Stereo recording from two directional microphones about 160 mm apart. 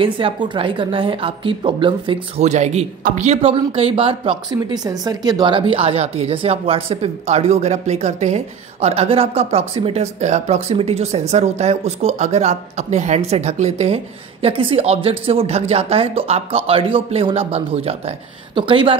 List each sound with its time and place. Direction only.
0.0 s speech: 35° right (ahead or behind)
2.4 s a man's voice: 45° right (ahead or behind)